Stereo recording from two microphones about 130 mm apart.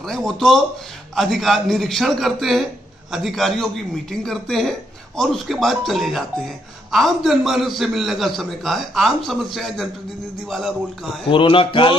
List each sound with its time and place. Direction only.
0.1 s a man's voice: centre (ahead or behind)
11.2 s speech: 40° left (ahead or behind)